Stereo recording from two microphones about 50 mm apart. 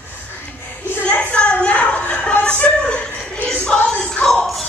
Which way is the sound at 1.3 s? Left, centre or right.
Left.